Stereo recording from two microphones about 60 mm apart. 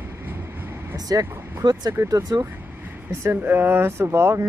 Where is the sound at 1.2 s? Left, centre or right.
Right.